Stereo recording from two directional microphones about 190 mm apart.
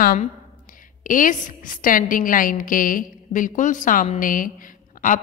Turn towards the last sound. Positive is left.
turn(degrees=45)  # may be behind; listen again after turning